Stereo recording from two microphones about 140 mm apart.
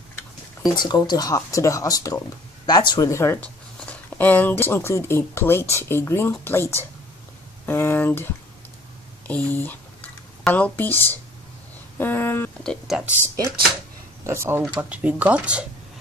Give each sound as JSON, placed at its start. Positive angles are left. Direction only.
{"t": 0.7, "sound": "speech", "side_deg": 30}
{"t": 9.3, "sound": "speech", "side_deg": 10}
{"t": 12.6, "sound": "speech", "side_deg": -5}
{"t": 14.2, "sound": "speech", "side_deg": -20}